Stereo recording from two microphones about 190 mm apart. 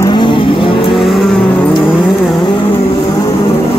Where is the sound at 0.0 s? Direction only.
25° left (ahead or behind).